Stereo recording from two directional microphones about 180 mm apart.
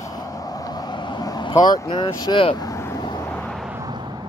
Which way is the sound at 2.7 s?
15° left (ahead or behind).